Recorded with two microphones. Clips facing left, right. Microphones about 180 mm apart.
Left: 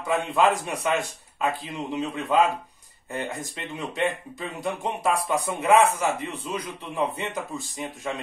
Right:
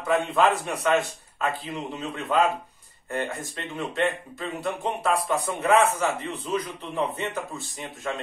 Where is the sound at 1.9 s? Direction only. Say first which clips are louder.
Left 2 dB; 15° left (ahead or behind).